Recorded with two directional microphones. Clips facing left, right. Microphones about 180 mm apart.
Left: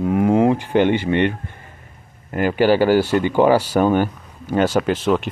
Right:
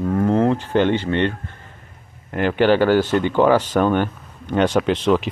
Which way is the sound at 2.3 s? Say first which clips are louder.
Even; 5° left (ahead or behind).